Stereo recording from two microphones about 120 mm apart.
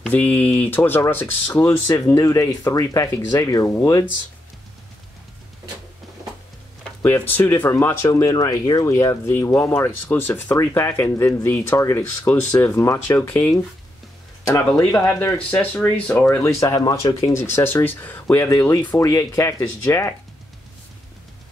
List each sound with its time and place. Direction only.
0.1 s speech: 15° left (ahead or behind)
7.0 s speech: 15° left (ahead or behind)
15.0 s speech: 25° left (ahead or behind)
15.6 s speech: 10° left (ahead or behind)
16.3 s speech: 25° left (ahead or behind)